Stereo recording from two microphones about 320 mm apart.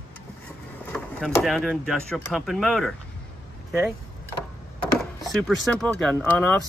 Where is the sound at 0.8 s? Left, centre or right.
Centre.